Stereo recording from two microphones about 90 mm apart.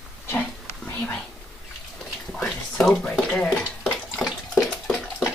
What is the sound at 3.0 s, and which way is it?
Stir, 10° left (ahead or behind).